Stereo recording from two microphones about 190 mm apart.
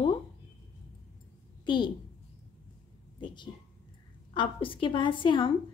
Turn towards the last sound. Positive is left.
turn(degrees=25)  # may be behind; listen again after turning